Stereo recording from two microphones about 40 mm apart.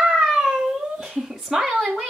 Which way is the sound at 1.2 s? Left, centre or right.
Centre.